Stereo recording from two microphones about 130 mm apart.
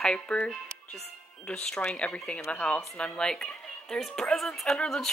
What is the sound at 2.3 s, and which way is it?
Speech, 20° left (ahead or behind).